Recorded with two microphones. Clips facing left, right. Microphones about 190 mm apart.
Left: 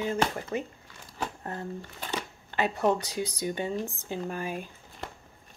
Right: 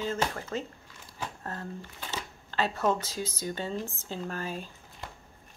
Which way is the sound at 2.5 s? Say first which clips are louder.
Left 2 dB; 15° left (ahead or behind).